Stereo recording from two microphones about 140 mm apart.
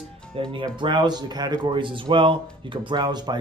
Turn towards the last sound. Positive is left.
turn(degrees=-30)  # may be behind; listen again after turning